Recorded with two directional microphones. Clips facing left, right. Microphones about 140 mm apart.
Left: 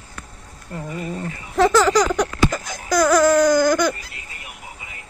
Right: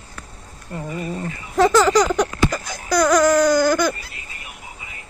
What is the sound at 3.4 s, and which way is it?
Baby cry, 20° left (ahead or behind).